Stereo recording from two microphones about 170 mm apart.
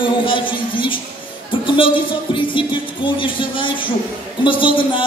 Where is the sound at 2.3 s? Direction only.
30° left (ahead or behind).